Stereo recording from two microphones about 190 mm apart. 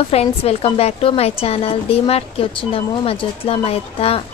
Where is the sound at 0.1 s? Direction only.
35° left (ahead or behind).